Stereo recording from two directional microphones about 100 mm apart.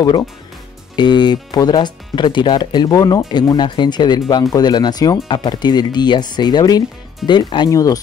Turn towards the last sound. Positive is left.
turn(degrees=35)  # may be behind; listen again after turning